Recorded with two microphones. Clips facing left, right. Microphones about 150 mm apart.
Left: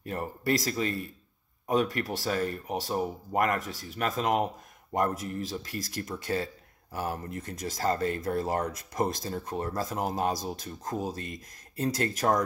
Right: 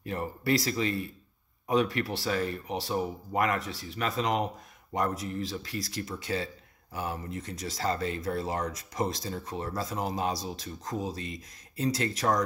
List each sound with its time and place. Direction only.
0.0 s speech: 45° left (ahead or behind)